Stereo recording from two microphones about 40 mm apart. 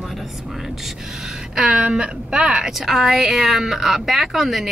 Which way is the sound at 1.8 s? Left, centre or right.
Right.